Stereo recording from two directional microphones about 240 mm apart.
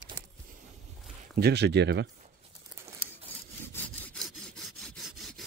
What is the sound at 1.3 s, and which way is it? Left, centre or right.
Speech, right.